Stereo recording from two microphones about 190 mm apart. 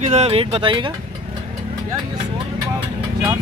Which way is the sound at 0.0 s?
35° right (ahead or behind).